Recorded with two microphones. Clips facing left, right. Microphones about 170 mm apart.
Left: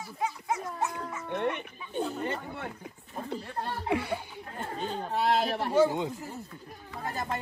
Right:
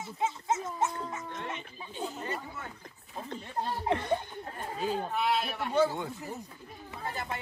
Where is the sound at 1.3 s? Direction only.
60° left (ahead or behind).